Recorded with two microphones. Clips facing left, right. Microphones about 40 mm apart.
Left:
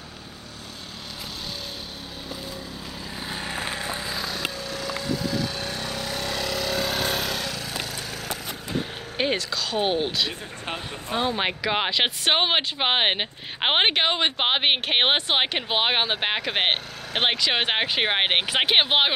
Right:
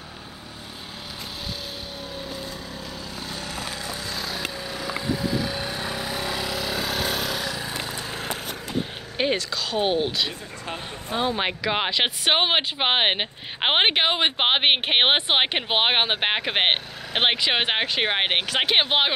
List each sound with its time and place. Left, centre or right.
3.3 s vehicle: left
4.6 s vehicle: centre
7.5 s a sound: centre
9.2 s speech: centre
17.8 s speech: centre